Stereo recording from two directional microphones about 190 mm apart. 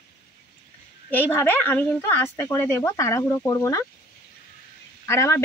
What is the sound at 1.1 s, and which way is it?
Speech, 10° left (ahead or behind).